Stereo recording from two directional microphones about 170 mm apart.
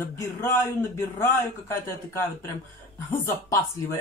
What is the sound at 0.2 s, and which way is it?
Speech, 15° left (ahead or behind).